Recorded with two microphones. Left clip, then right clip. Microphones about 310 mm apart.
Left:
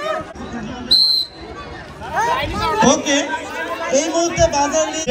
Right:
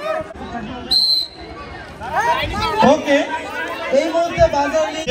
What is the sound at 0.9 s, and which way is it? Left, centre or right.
Basketball bounce, centre.